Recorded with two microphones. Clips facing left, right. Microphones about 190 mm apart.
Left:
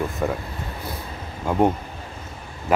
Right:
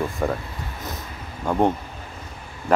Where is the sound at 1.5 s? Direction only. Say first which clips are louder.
Left 1 dB; 10° left (ahead or behind).